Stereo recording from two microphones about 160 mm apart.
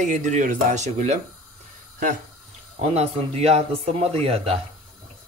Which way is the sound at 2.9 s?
40° right (ahead or behind).